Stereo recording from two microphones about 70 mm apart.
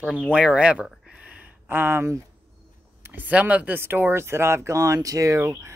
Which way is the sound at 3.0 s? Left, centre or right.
Right.